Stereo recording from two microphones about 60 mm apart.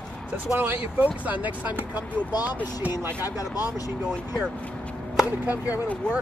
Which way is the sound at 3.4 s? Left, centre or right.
Left.